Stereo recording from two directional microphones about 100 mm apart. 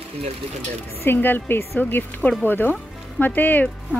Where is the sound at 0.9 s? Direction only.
20° left (ahead or behind).